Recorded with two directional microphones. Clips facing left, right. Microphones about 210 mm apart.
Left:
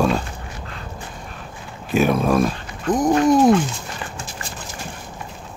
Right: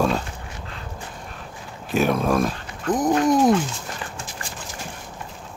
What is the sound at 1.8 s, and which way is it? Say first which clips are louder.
Speech: left 3 dB; 5° left (ahead or behind).